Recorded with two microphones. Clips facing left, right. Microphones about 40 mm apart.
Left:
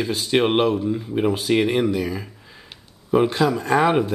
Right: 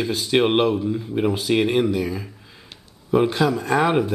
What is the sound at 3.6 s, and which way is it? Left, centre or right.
Speech, centre.